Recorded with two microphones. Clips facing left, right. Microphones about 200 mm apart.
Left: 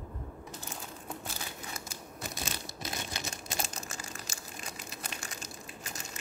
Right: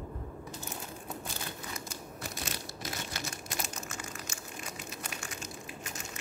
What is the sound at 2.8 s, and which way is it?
Crumpling, 25° left (ahead or behind).